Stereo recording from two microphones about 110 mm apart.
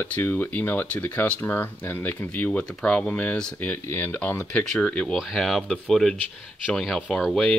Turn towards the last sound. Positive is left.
turn(degrees=10)  # may be behind; listen again after turning